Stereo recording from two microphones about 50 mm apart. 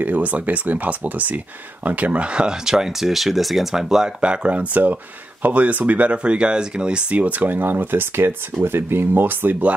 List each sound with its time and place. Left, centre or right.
0.0 s speech: right; by 4.1 s centre
4.2 s speech: right